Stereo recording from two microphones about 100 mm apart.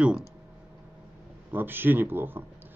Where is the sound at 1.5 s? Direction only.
20° right (ahead or behind).